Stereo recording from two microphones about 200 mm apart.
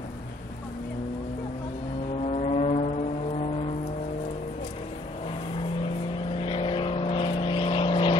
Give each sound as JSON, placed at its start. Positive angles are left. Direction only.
{"t": 2.2, "sound": "vehicle", "side_deg": 30}
{"t": 6.3, "sound": "vehicle", "side_deg": 25}